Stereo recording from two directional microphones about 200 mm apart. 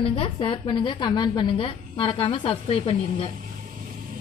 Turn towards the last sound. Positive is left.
turn(degrees=30)  # may be behind; listen again after turning